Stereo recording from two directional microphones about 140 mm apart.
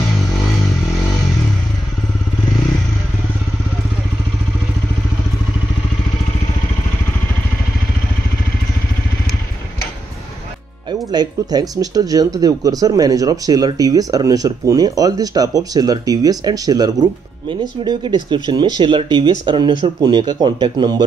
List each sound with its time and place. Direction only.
10.9 s speech: 30° right (ahead or behind)